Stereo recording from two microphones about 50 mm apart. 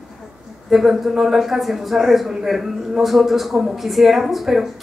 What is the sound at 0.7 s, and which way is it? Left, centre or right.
A woman's voice, centre.